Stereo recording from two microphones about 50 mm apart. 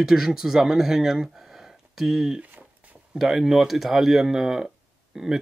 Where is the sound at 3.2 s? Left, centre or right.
Centre.